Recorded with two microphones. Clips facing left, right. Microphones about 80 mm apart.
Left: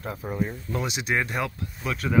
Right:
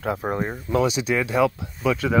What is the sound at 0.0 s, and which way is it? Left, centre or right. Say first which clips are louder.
Speech: right 8 dB; right.